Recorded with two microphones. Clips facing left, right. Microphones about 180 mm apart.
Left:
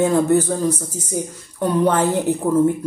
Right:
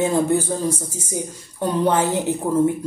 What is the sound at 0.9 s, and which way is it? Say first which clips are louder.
Speech: left 3 dB; 20° left (ahead or behind).